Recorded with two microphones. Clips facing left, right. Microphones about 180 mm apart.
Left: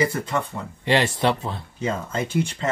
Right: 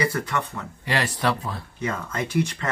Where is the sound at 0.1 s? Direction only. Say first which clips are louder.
Left 1 dB; 25° left (ahead or behind).